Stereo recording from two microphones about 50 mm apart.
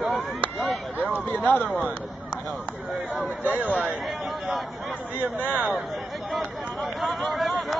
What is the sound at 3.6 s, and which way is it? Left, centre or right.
Speech, right.